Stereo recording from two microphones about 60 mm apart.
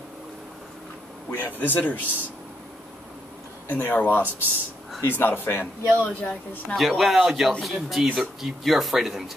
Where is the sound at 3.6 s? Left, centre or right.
Left.